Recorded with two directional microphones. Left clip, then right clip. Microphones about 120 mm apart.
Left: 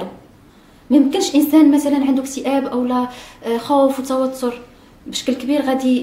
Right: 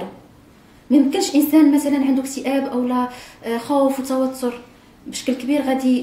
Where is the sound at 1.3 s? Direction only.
Centre (ahead or behind).